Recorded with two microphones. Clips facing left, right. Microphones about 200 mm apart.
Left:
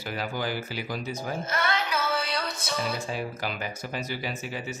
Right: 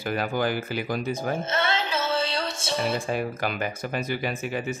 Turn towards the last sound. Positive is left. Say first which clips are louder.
# right 5 dB
turn(degrees=-55)  # may be behind; listen again after turning